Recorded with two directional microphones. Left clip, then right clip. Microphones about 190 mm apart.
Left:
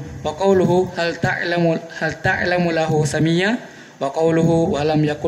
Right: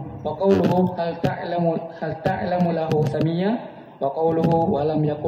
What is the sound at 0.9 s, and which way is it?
A man's voice, 50° left (ahead or behind).